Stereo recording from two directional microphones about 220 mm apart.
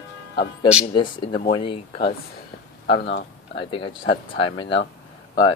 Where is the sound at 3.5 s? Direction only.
25° left (ahead or behind).